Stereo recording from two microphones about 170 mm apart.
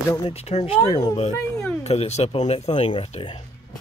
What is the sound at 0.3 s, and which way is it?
Speech, 35° left (ahead or behind).